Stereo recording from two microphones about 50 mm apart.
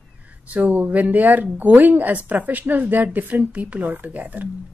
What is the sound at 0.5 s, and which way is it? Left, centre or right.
A woman's voice, right.